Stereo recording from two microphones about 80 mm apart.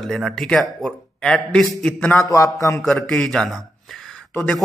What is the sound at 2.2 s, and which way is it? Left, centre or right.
Speech, left.